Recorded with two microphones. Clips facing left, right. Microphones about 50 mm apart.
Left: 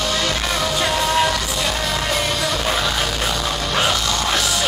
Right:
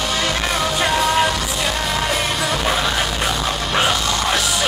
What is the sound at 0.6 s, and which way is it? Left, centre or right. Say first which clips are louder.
Music: right 2 dB; centre.